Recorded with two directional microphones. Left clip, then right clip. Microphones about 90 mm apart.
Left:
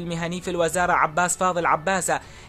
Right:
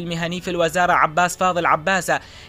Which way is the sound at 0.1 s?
25° right (ahead or behind).